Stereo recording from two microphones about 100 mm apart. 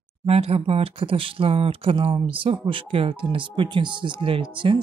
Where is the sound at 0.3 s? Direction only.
85° right.